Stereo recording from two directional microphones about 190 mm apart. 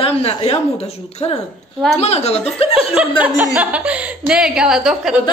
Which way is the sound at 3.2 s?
10° right (ahead or behind).